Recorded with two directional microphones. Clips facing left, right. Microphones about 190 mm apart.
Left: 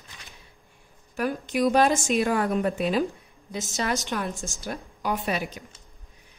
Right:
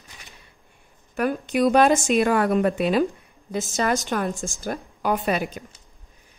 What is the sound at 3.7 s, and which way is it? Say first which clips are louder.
A woman's voice: right 4 dB; 50° right (ahead or behind).